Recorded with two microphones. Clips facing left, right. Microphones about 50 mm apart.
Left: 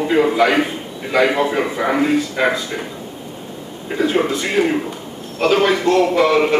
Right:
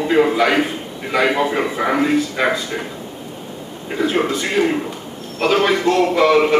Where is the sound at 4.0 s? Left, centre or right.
Centre.